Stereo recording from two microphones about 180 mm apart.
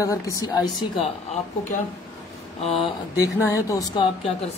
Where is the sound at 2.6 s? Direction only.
35° left (ahead or behind).